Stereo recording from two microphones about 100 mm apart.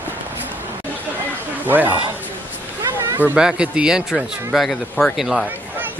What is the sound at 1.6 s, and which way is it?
Speech, 15° right (ahead or behind).